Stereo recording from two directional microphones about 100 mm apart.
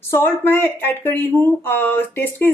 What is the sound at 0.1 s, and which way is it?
Speech, 20° left (ahead or behind).